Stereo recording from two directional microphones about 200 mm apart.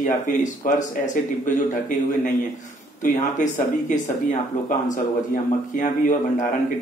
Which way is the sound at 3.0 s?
40° left (ahead or behind).